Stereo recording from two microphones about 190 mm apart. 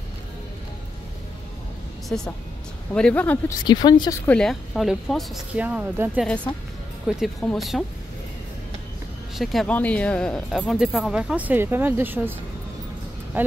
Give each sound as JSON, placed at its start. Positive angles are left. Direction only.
{"t": 2.0, "sound": "a woman's voice", "side_deg": 5}
{"t": 3.6, "sound": "speech", "side_deg": 20}
{"t": 4.3, "sound": "speech", "side_deg": 0}
{"t": 6.2, "sound": "speech", "side_deg": 5}
{"t": 9.4, "sound": "speech", "side_deg": 0}